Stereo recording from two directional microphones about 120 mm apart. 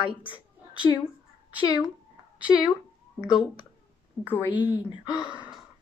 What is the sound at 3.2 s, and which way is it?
Speech, 5° right (ahead or behind).